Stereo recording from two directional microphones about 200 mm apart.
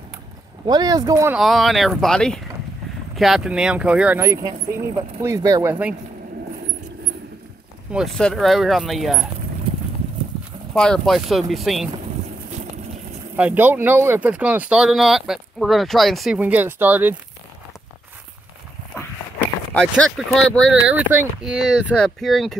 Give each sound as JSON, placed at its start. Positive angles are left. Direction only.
{"t": 0.7, "sound": "speech", "side_deg": -20}
{"t": 1.4, "sound": "speech", "side_deg": 0}
{"t": 7.9, "sound": "speech", "side_deg": 0}
{"t": 10.7, "sound": "speech", "side_deg": 5}
{"t": 13.4, "sound": "speech", "side_deg": -10}
{"t": 18.9, "sound": "a sound", "side_deg": 10}
{"t": 20.9, "sound": "speech", "side_deg": -10}